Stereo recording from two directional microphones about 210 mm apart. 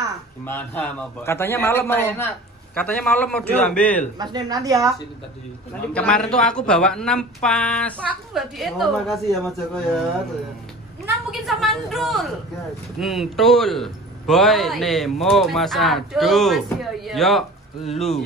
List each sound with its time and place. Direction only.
0.5 s a man's voice: 10° left (ahead or behind)
4.2 s speech: 20° right (ahead or behind)
5.9 s a man's voice: 5° left (ahead or behind)
11.2 s a man's voice: centre (ahead or behind)
17.8 s speech: 30° left (ahead or behind)